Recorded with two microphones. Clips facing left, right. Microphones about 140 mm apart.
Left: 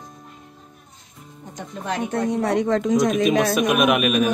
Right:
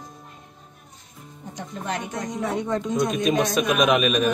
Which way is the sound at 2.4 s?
90° left.